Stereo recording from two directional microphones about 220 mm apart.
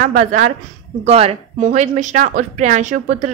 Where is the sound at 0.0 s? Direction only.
35° right (ahead or behind).